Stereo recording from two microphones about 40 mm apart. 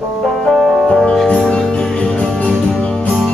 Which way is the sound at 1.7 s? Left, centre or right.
Left.